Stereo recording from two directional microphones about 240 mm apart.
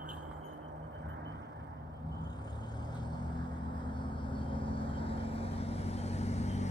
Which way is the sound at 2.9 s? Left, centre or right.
Centre.